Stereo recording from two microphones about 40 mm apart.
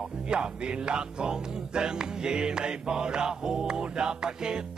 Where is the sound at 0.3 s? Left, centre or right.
Right.